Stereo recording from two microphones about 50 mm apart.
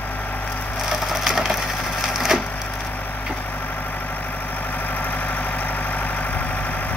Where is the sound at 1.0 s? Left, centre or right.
Centre.